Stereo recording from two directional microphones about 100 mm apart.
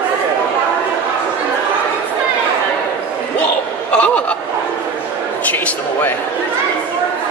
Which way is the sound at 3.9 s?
15° left (ahead or behind).